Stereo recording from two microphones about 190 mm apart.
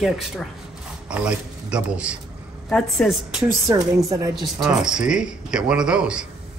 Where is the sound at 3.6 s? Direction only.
20° right (ahead or behind).